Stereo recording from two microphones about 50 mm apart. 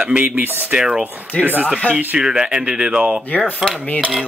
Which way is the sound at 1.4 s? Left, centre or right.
Right.